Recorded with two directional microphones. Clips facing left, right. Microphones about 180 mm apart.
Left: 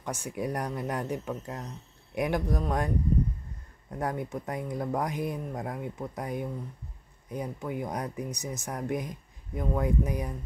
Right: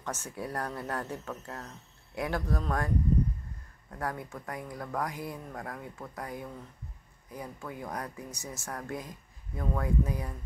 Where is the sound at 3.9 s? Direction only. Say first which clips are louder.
Left 5 dB; 20° left (ahead or behind).